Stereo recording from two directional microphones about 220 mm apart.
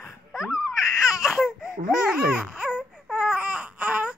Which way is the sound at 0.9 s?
15° left (ahead or behind).